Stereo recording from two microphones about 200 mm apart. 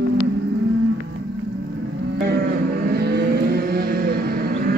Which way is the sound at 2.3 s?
50° right (ahead or behind).